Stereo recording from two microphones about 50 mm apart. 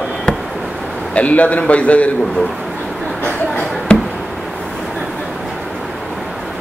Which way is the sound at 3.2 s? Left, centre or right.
Left.